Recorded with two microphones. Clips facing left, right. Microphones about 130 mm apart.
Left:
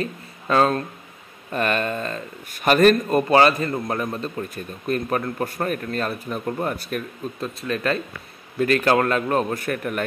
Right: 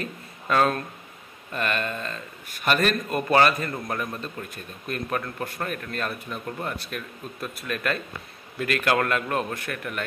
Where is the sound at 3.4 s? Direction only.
30° left (ahead or behind).